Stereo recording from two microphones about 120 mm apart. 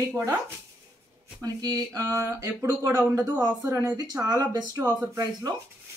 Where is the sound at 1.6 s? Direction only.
30° right (ahead or behind).